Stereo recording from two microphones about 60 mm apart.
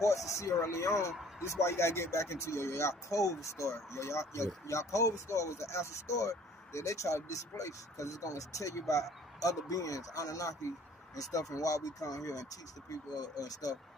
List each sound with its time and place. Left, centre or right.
0.0 s speech: left
1.6 s speech: left